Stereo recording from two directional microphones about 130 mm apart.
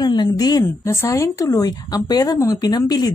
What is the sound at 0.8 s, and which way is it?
Speech, 20° left (ahead or behind).